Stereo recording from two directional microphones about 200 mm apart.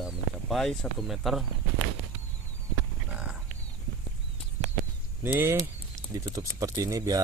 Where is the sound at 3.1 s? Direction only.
5° right (ahead or behind).